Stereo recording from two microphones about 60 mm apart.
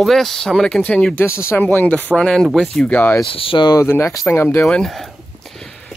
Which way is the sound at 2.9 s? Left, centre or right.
Left.